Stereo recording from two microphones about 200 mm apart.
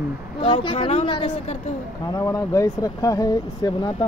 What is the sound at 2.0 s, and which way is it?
Speech, 15° left (ahead or behind).